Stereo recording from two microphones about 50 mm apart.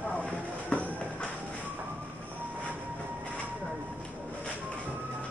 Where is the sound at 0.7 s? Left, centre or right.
Left.